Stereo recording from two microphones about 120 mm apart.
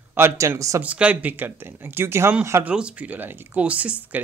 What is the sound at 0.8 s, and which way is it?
Speech, 10° right (ahead or behind).